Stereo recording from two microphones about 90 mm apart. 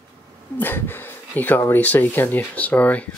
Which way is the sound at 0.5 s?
25° left (ahead or behind).